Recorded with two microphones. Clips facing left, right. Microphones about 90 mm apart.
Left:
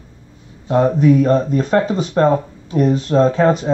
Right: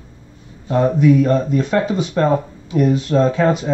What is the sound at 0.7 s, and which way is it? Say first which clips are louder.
Speech: left 1 dB; 40° left (ahead or behind).